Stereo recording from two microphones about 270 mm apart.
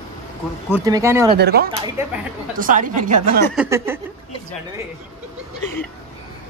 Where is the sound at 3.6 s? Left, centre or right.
Centre.